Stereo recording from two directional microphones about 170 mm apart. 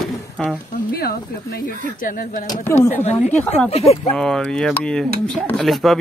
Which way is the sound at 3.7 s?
35° left (ahead or behind).